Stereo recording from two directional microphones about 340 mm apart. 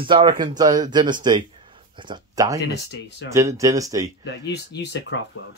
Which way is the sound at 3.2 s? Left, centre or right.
Centre.